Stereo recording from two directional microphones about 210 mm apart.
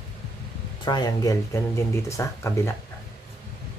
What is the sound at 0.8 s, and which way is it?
Speech, 20° left (ahead or behind).